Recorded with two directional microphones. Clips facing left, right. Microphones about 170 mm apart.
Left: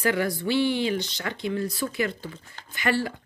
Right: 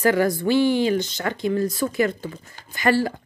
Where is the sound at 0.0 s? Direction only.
45° right (ahead or behind).